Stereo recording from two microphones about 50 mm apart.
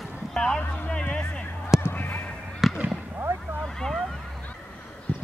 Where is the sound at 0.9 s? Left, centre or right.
Centre.